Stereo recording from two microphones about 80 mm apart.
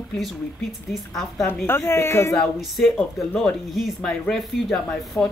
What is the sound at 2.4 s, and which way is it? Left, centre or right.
Speech, centre.